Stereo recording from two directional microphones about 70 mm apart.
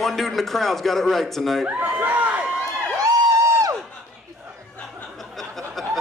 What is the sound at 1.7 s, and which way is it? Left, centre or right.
Speech, right.